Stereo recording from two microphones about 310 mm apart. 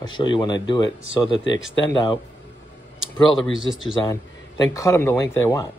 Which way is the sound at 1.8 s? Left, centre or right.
Centre.